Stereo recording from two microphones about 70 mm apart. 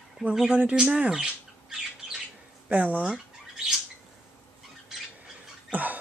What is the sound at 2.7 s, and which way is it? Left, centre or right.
Speech, centre.